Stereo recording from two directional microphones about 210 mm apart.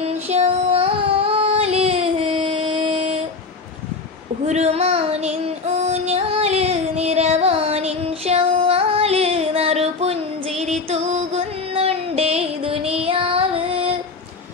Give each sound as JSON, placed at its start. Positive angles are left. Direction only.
{"t": 0.0, "sound": "child singing", "side_deg": -30}
{"t": 4.5, "sound": "female singing", "side_deg": -30}